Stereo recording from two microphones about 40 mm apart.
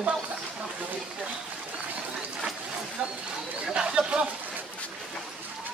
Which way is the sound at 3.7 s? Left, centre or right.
Right.